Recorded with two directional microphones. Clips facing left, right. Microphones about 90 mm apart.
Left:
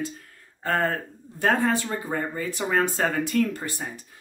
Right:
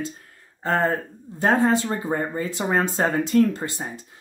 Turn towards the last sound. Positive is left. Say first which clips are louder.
# right 5 dB
turn(degrees=-30)  # may be behind; listen again after turning